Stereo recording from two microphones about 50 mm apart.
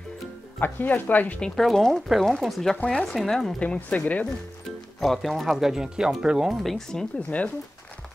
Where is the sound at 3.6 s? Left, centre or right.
Left.